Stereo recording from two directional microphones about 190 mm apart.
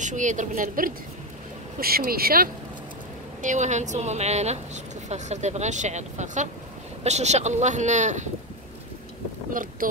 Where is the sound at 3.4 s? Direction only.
40° right (ahead or behind).